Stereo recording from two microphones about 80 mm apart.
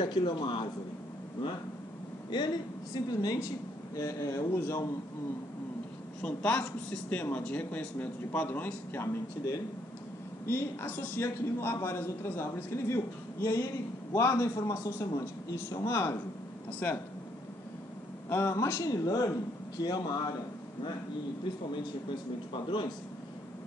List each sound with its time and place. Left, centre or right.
0.0 s speech: left
2.3 s a woman's voice: left
3.3 s a man's voice: left
6.2 s speech: centre
10.4 s a man's voice: left
18.3 s a man's voice: left
19.0 s a woman's voice: left
22.5 s speech: left